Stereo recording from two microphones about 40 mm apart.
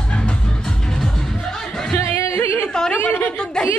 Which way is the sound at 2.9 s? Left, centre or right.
Left.